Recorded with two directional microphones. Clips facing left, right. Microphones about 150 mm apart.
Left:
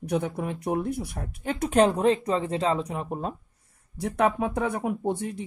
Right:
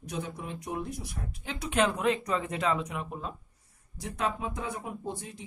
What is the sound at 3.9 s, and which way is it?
Speech, 60° left (ahead or behind).